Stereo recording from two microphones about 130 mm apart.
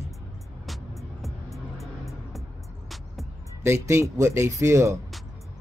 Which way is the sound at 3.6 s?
20° right (ahead or behind).